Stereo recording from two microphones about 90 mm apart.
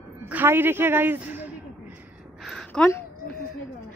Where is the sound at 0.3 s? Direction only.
20° right (ahead or behind).